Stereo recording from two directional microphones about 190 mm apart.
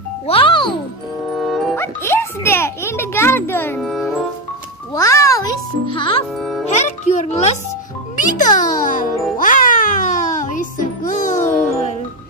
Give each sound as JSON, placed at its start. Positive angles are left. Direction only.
{"t": 0.3, "sound": "music", "side_deg": 25}
{"t": 1.3, "sound": "music", "side_deg": 0}
{"t": 1.8, "sound": "music", "side_deg": 10}
{"t": 4.9, "sound": "music", "side_deg": 15}
{"t": 6.3, "sound": "music", "side_deg": 0}
{"t": 6.7, "sound": "music", "side_deg": 35}